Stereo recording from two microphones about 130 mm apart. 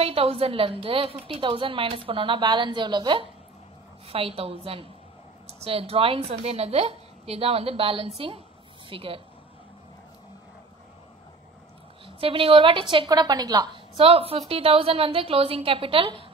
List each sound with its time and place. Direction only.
0.0 s a woman's voice: 50° right (ahead or behind)
4.1 s a woman's voice: 50° right (ahead or behind)
12.2 s speech: 45° right (ahead or behind)
13.9 s a woman's voice: 45° right (ahead or behind)